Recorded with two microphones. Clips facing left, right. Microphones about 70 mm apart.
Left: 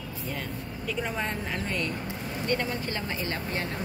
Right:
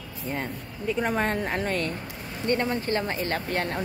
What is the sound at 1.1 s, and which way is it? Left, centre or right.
Speech, right.